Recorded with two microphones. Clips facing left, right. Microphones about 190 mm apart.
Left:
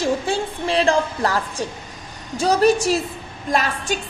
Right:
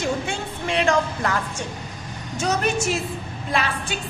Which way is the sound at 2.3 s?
35° left (ahead or behind).